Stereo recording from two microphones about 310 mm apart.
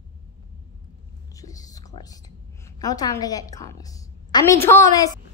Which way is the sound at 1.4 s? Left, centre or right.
Centre.